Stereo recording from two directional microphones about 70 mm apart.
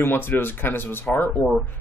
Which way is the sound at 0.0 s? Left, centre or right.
Left.